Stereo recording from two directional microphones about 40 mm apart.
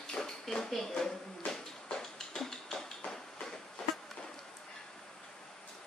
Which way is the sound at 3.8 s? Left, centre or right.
Centre.